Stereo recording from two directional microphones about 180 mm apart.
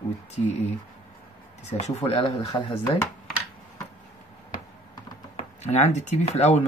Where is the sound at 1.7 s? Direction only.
40° left (ahead or behind).